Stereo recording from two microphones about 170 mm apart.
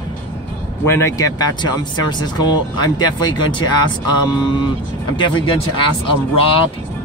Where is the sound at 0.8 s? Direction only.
15° left (ahead or behind).